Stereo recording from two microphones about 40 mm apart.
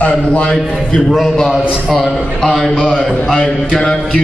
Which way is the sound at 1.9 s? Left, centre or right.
Centre.